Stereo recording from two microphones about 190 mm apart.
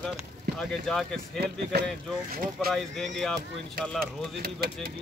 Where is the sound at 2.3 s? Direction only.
50° right (ahead or behind).